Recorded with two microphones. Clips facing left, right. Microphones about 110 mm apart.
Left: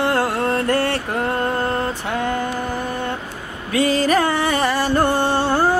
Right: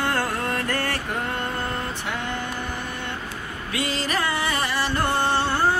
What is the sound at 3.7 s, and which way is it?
Music, 45° left (ahead or behind).